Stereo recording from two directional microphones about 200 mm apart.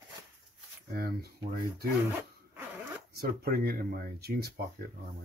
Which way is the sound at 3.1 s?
50° right (ahead or behind).